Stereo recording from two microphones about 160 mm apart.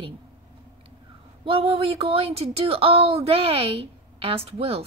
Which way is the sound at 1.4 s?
35° right (ahead or behind).